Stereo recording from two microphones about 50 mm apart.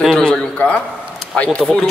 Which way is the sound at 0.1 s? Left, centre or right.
Centre.